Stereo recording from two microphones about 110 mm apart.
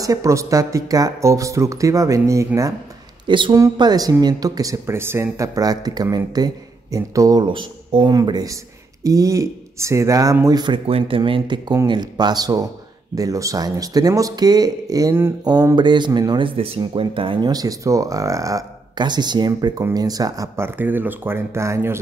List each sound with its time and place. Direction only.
0.0 s speech: 30° right (ahead or behind)
3.3 s speech: 45° right (ahead or behind)
3.5 s speech: 35° right (ahead or behind)
7.4 s speech: 50° right (ahead or behind)
10.9 s speech: 55° right (ahead or behind)
17.5 s speech: 35° right (ahead or behind)
20.5 s speech: 20° right (ahead or behind)